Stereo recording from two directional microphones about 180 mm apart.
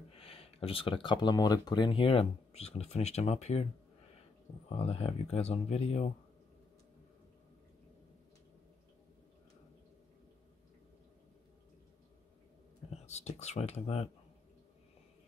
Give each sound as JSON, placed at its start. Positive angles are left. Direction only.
{"t": 0.1, "sound": "speech", "side_deg": 30}
{"t": 4.6, "sound": "speech", "side_deg": 35}
{"t": 12.9, "sound": "speech", "side_deg": 35}